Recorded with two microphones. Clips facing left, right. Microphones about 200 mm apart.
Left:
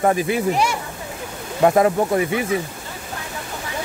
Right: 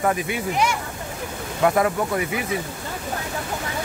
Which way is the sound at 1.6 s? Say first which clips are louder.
Left 4 dB; 30° left (ahead or behind).